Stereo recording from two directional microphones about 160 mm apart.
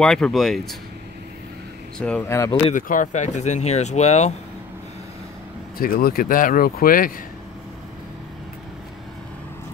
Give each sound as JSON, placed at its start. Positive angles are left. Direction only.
{"t": 0.0, "sound": "speech", "side_deg": 5}
{"t": 2.0, "sound": "speech", "side_deg": 5}
{"t": 2.7, "sound": "speech", "side_deg": 55}
{"t": 5.8, "sound": "speech", "side_deg": 65}